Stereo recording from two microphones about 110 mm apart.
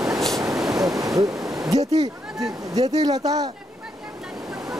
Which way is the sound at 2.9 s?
35° right (ahead or behind).